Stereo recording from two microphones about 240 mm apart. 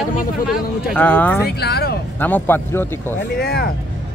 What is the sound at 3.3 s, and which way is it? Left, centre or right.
Speech, left.